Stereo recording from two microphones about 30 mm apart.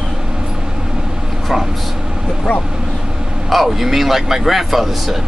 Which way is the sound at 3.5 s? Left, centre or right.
Centre.